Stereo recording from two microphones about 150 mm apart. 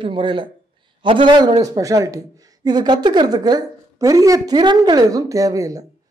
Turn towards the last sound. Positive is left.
turn(degrees=-20)  # may be behind; listen again after turning